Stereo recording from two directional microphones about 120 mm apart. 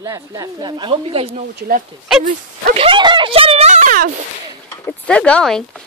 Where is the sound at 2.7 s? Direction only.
45° right (ahead or behind); by 3.9 s 70° right (ahead or behind).